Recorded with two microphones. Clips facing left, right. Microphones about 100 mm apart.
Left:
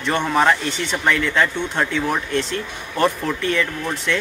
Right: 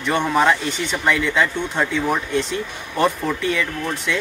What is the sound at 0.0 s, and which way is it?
Speech, 10° right (ahead or behind).